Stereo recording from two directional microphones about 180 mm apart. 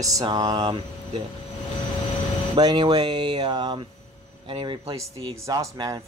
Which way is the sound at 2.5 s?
25° right (ahead or behind).